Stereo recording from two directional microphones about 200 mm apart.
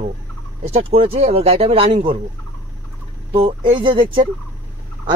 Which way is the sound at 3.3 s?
25° right (ahead or behind).